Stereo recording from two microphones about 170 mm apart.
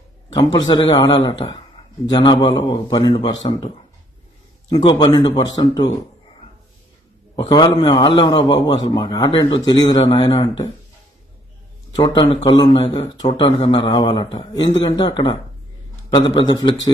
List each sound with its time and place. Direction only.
0.3 s a man's voice: 25° left (ahead or behind)
4.6 s a man's voice: 25° left (ahead or behind)
7.3 s a man's voice: 25° left (ahead or behind)
11.9 s a man's voice: 25° left (ahead or behind)